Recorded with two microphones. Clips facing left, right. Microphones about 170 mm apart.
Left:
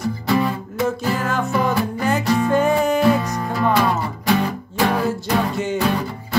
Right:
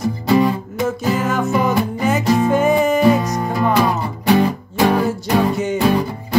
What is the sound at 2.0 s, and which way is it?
Music, centre (ahead or behind).